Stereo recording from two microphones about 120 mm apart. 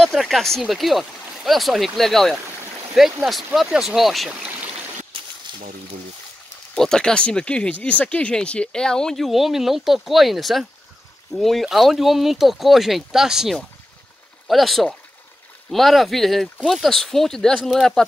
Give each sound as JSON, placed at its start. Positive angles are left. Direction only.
{"t": 0.0, "sound": "speech", "side_deg": 0}
{"t": 4.4, "sound": "stream", "side_deg": -15}
{"t": 5.5, "sound": "a sound", "side_deg": -45}
{"t": 6.7, "sound": "speech", "side_deg": 5}